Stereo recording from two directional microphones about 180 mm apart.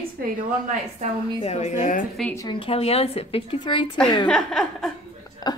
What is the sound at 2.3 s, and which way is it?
A woman's voice, 25° left (ahead or behind).